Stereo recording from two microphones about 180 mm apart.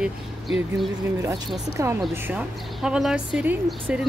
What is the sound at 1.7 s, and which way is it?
A woman's voice, 15° right (ahead or behind).